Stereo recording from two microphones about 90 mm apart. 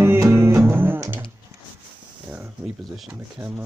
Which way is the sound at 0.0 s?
25° right (ahead or behind).